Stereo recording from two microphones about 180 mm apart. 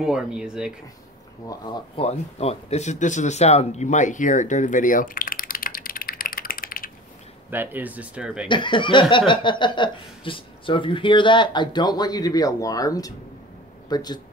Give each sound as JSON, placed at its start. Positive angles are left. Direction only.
{"t": 0.0, "sound": "speech", "side_deg": -5}
{"t": 2.0, "sound": "speech", "side_deg": 35}
{"t": 7.5, "sound": "speech", "side_deg": -10}
{"t": 8.5, "sound": "speech", "side_deg": 25}